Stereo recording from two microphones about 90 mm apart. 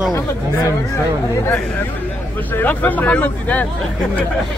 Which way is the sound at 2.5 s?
20° left (ahead or behind).